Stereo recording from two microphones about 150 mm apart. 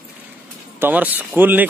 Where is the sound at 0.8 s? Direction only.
10° right (ahead or behind).